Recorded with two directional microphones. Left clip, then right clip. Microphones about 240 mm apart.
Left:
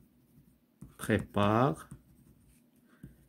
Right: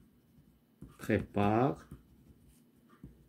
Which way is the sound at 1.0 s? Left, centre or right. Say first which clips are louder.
Left 2 dB; left.